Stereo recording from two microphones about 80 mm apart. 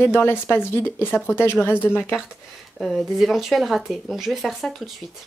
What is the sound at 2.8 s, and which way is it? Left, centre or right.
Speech, centre.